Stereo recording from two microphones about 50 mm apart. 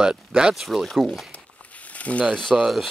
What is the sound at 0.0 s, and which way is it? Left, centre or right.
Speech, centre.